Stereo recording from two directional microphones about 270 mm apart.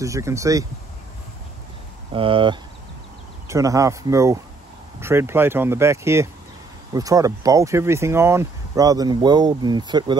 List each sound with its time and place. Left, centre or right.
0.0 s speech: centre
2.1 s speech: centre